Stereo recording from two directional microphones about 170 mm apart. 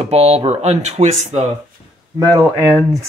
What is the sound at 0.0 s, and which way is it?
Speech, 40° right (ahead or behind).